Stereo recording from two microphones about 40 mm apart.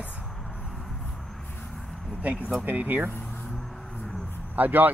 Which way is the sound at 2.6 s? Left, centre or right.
Right.